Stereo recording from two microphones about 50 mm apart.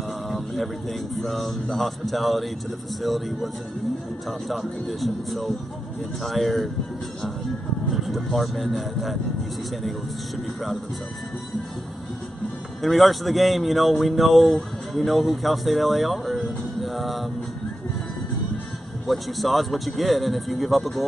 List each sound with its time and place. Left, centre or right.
0.3 s speech: centre
7.9 s speech: centre
12.8 s speech: centre
19.0 s speech: centre